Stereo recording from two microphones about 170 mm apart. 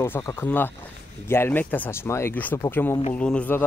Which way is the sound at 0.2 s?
20° left (ahead or behind).